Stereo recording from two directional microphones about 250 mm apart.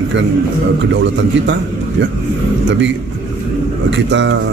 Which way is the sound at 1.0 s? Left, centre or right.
Right.